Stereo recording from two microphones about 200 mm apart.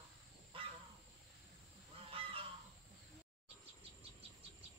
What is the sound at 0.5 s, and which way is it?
Crow, 25° right (ahead or behind).